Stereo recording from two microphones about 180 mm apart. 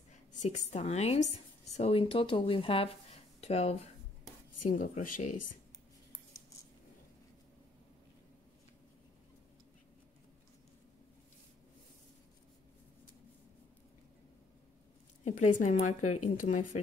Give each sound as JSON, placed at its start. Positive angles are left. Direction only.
{"t": 0.3, "sound": "speech", "side_deg": 40}
{"t": 4.6, "sound": "speech", "side_deg": 45}
{"t": 15.2, "sound": "speech", "side_deg": 40}